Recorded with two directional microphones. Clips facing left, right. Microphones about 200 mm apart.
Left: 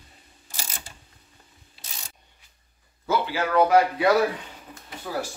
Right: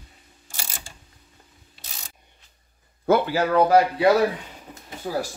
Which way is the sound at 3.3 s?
35° right (ahead or behind).